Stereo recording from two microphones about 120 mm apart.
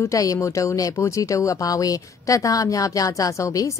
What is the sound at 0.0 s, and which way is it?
A woman's voice, 30° left (ahead or behind).